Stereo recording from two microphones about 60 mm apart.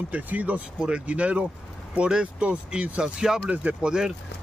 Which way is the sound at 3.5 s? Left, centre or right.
Right.